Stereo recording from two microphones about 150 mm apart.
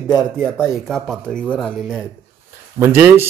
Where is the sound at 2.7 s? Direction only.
15° right (ahead or behind).